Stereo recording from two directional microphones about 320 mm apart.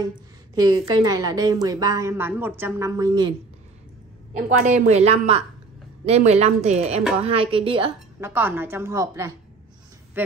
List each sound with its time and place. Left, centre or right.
0.0 s a woman's voice: centre
4.5 s a woman's voice: right; by 10.3 s centre